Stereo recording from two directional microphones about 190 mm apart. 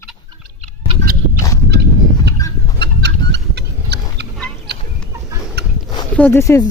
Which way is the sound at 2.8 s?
65° right (ahead or behind).